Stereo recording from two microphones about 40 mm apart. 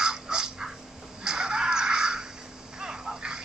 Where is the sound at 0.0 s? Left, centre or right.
Centre.